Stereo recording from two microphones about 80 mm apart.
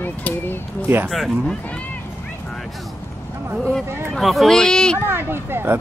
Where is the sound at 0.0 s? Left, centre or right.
Left.